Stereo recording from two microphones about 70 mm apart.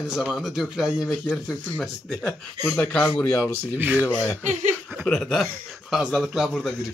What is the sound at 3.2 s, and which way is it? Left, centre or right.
Speech, left.